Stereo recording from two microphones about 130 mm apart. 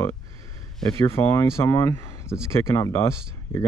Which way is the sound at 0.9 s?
20° left (ahead or behind).